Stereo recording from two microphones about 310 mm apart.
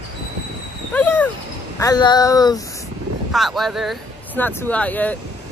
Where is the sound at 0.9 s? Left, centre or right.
Centre.